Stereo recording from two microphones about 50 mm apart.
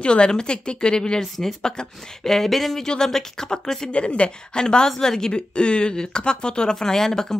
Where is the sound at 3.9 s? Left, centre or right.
Left.